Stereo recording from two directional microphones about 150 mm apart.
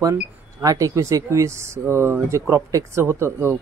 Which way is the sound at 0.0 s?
25° right (ahead or behind).